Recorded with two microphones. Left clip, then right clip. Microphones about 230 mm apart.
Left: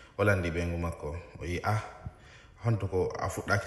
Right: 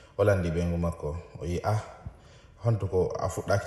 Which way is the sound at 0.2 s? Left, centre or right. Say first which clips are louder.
Right 3 dB; centre.